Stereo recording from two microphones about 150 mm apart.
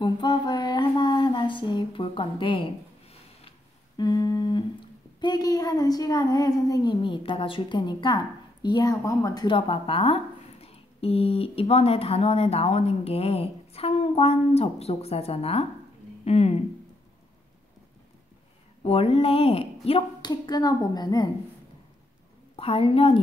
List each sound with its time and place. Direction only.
0.0 s a sound: 30° left (ahead or behind)
4.0 s a woman's voice: 25° left (ahead or behind); by 16.6 s 45° left (ahead or behind)
18.9 s speech: 40° left (ahead or behind)
20.2 s a woman's voice: 25° left (ahead or behind)
22.6 s a woman's voice: 40° left (ahead or behind)